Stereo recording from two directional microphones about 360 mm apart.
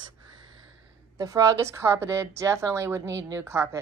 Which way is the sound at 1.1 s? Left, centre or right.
Centre.